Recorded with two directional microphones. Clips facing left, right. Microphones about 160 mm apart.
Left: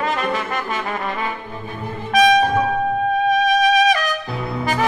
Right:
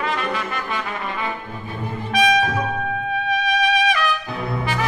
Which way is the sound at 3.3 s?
45° left (ahead or behind).